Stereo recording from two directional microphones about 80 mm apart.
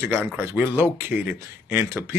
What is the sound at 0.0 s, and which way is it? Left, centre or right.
Speech, right.